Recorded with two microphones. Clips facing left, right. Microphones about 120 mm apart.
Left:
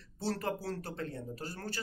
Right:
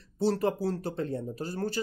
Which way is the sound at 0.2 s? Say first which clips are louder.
Right 9 dB; 20° right (ahead or behind).